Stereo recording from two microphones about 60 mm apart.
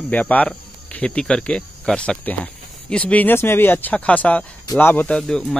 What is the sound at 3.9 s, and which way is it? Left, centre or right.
Speech, left.